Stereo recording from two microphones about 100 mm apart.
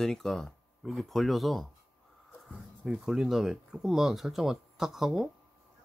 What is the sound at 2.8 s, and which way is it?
Speech, 5° right (ahead or behind).